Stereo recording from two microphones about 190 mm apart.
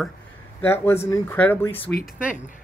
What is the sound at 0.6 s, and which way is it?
Speech, 10° left (ahead or behind).